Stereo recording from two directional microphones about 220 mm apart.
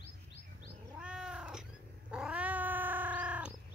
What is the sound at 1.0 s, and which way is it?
Cat, 5° right (ahead or behind).